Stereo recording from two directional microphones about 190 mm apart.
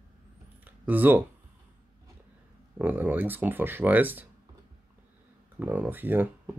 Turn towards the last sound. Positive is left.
turn(degrees=-10)  # may be behind; listen again after turning